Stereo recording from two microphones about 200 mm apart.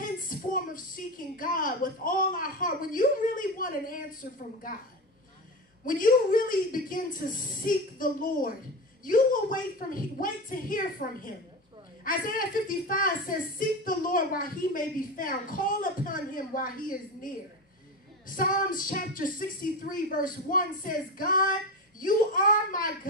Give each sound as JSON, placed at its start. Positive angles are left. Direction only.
{"t": 0.0, "sound": "a woman's voice", "side_deg": 45}
{"t": 5.9, "sound": "a woman's voice", "side_deg": 45}